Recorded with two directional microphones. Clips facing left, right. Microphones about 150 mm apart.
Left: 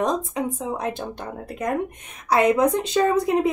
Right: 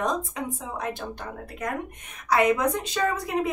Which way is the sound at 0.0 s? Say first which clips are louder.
Left 5 dB; 25° left (ahead or behind).